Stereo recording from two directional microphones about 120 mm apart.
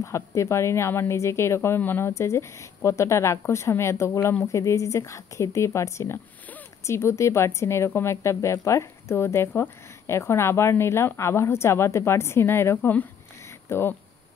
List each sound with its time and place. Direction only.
0.0 s speech: 25° left (ahead or behind)